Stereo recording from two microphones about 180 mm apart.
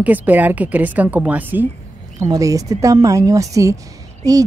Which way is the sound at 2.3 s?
20° right (ahead or behind).